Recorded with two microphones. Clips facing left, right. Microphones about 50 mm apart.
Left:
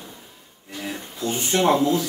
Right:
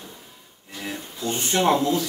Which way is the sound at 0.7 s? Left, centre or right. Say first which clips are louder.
Left 2 dB; centre.